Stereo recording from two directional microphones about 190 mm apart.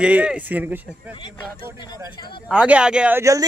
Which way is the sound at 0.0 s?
5° right (ahead or behind).